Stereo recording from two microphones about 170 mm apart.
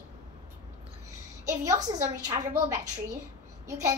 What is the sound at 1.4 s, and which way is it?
A woman's voice, 20° right (ahead or behind).